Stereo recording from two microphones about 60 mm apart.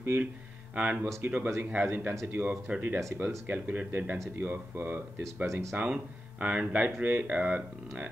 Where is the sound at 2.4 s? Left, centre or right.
Right.